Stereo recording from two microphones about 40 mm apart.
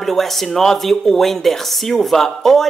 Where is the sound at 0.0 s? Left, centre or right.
Centre.